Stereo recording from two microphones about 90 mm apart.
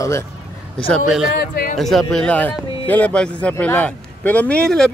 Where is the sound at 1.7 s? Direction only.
Centre (ahead or behind).